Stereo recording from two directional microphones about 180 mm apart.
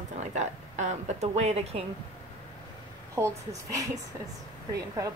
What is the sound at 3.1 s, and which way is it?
Speech, 15° right (ahead or behind).